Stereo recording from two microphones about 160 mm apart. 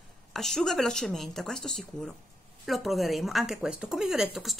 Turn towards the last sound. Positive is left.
turn(degrees=0)  # may be behind; listen again after turning